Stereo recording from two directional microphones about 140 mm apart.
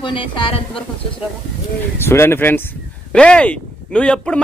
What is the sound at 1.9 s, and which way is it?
Speech, 15° left (ahead or behind).